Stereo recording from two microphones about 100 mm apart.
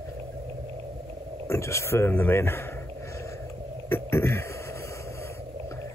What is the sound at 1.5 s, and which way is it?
Speech, 30° left (ahead or behind).